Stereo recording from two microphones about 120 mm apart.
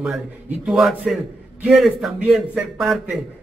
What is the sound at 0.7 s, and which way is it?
A man's voice, 5° right (ahead or behind).